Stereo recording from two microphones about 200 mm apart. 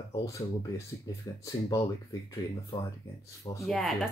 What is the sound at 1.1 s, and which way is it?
Speech, 20° left (ahead or behind).